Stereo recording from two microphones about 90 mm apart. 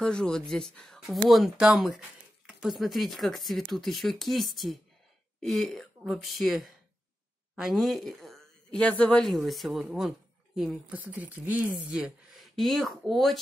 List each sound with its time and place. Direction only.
0.0 s speech: 5° left (ahead or behind)
7.5 s a sound: 5° right (ahead or behind)
8.7 s speech: 10° left (ahead or behind)
9.9 s a sound: 5° right (ahead or behind)
10.9 s speech: 20° right (ahead or behind)
12.4 s speech: centre (ahead or behind)